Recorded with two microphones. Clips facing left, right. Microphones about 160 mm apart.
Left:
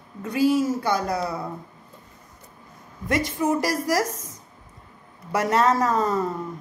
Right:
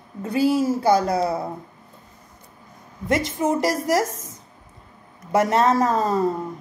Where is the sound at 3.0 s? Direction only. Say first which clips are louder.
Right 1 dB; 25° right (ahead or behind).